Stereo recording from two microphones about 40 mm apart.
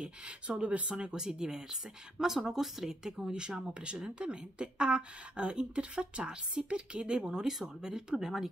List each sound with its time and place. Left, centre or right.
0.0 s speech: right
0.9 s speech: centre